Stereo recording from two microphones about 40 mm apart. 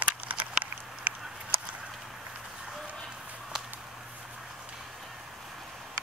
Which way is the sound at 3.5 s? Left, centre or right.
Centre.